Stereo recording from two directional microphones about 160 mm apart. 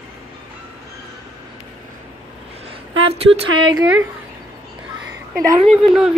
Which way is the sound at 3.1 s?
40° right (ahead or behind).